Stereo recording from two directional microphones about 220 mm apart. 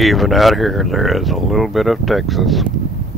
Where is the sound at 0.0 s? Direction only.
Centre (ahead or behind).